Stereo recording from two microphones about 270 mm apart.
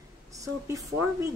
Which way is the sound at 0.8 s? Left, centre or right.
Centre.